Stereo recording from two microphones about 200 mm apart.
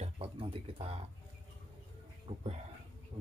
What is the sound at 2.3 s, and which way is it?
Speech, 30° right (ahead or behind).